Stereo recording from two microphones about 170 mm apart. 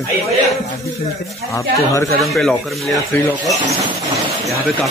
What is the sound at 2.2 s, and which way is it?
Speech, centre (ahead or behind).